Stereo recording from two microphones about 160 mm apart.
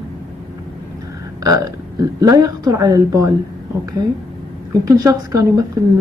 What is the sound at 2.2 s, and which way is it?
Speech, 20° right (ahead or behind).